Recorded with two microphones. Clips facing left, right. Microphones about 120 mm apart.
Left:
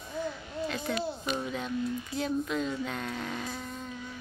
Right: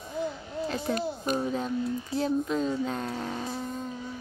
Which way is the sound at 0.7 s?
30° right (ahead or behind).